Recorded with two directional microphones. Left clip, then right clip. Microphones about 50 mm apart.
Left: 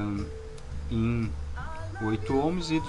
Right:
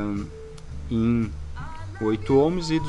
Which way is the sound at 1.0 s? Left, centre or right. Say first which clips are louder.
Right 7 dB; right.